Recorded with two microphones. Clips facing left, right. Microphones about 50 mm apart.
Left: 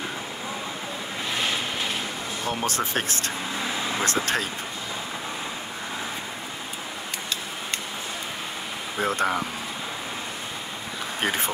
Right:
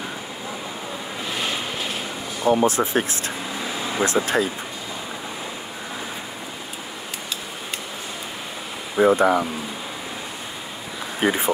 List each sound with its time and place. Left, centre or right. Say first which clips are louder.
1.3 s vehicle: even; centre
2.4 s speech: right 10 dB; centre
8.9 s speech: right 8 dB; centre
11.2 s speech: right 6 dB; centre